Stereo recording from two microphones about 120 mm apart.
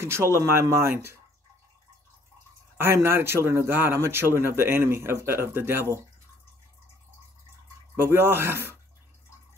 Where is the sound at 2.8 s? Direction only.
20° right (ahead or behind).